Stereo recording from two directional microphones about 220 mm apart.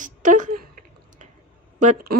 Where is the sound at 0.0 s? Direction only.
35° right (ahead or behind).